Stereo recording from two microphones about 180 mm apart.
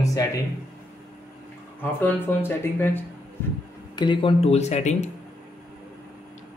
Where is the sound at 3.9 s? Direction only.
30° left (ahead or behind).